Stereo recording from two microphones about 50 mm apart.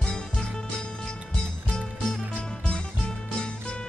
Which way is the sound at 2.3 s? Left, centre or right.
Left.